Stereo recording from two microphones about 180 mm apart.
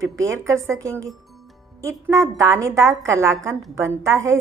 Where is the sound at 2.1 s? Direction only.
15° right (ahead or behind).